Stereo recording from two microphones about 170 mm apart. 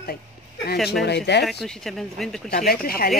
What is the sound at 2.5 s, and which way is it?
Speech, 60° left (ahead or behind).